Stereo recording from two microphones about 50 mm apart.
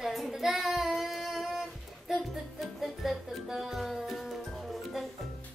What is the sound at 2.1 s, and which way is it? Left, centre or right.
Music, centre.